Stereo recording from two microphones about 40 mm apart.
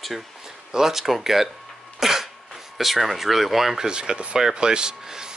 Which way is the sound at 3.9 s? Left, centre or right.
Right.